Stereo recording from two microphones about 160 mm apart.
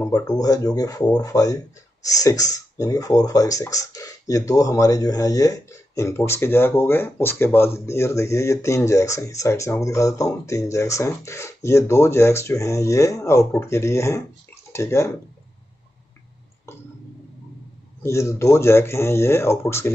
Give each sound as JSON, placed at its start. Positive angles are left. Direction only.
{"t": 0.0, "sound": "speech", "side_deg": 20}
{"t": 18.0, "sound": "speech", "side_deg": 15}